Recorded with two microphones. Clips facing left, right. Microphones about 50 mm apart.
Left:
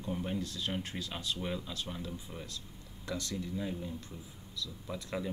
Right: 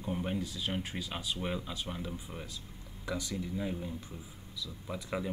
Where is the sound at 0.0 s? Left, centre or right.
Centre.